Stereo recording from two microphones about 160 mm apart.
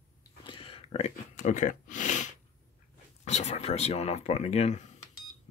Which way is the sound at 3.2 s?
45° left (ahead or behind).